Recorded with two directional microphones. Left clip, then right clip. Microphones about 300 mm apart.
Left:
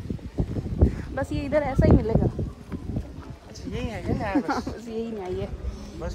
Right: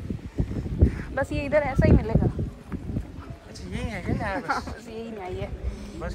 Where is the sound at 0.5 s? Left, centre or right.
Centre.